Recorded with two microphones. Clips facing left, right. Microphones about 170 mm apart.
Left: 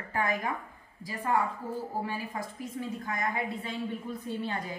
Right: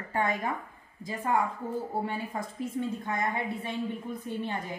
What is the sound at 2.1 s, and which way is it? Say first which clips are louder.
Speech: right 1 dB; 25° right (ahead or behind).